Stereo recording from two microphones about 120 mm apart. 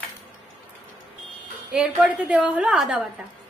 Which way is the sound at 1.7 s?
5° right (ahead or behind).